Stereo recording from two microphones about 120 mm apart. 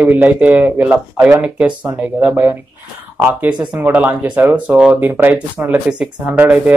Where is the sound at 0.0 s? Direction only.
15° right (ahead or behind).